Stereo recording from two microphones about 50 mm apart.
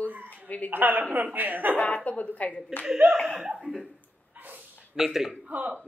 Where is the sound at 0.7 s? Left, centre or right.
Right.